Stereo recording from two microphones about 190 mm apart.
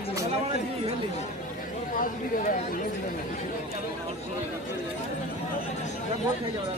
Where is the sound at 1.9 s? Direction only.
45° left (ahead or behind).